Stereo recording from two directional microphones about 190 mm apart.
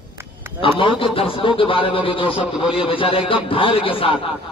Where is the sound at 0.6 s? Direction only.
25° left (ahead or behind).